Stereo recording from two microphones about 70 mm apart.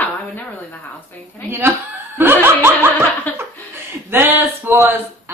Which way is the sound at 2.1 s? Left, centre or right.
Right.